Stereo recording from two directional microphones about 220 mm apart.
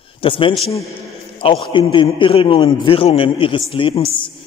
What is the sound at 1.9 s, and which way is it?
A man's voice, 20° left (ahead or behind).